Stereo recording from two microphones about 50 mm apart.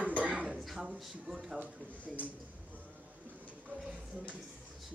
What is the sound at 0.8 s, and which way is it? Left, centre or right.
Speech, centre.